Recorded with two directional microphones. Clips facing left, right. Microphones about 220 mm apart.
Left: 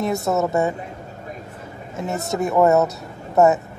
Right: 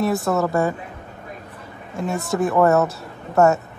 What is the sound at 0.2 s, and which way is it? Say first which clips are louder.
Speech: even; 20° left (ahead or behind).